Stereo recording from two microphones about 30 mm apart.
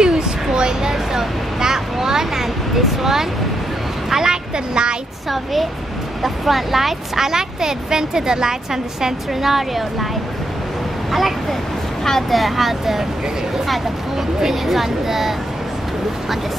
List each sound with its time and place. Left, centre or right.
0.0 s a sound: right
4.1 s speech: right
5.3 s speech: centre; by 8.5 s right
9.0 s speech: centre
11.1 s speech: centre
12.0 s speech: centre
12.3 s speech: centre
14.5 s speech: centre